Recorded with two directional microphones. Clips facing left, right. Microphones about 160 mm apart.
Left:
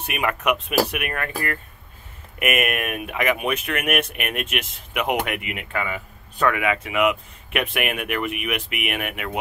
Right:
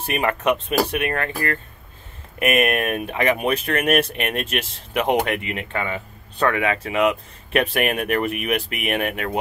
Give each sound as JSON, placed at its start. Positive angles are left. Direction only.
{"t": 0.0, "sound": "speech", "side_deg": -30}
{"t": 2.3, "sound": "speech", "side_deg": -30}